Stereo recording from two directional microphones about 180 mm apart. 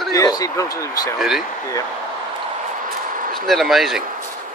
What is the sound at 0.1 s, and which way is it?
Speech, 20° left (ahead or behind).